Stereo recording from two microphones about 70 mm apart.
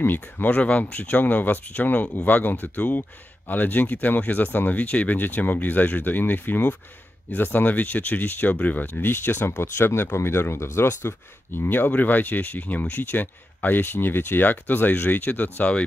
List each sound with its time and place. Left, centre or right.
0.0 s speech: left